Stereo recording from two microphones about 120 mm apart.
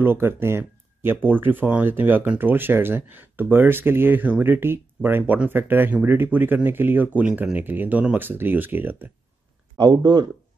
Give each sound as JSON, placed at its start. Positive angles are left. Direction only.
{"t": 0.0, "sound": "speech", "side_deg": -20}
{"t": 9.8, "sound": "speech", "side_deg": -40}